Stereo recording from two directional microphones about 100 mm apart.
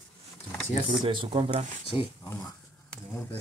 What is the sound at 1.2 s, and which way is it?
Speech, 80° right.